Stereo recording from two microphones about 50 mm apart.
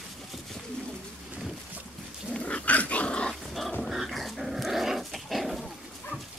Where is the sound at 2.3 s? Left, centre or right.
Left.